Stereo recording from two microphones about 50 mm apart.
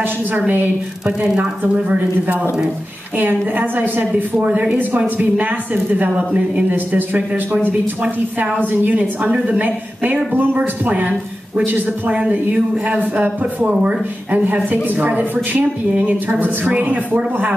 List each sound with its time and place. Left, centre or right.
0.5 s a woman's voice: right
1.2 s speech: centre
3.2 s a woman's voice: right
4.4 s a woman's voice: right
12.1 s a woman's voice: right